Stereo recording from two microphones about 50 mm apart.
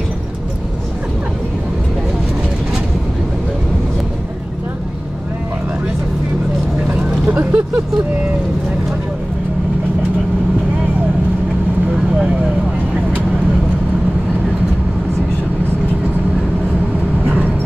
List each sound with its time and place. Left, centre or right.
7.2 s vehicle: right